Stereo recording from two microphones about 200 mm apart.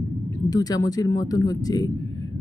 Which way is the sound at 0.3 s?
20° left (ahead or behind).